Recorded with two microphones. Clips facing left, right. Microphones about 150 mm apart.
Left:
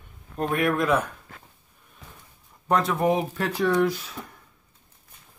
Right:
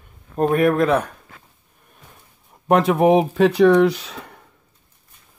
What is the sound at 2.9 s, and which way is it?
Speech, 80° right.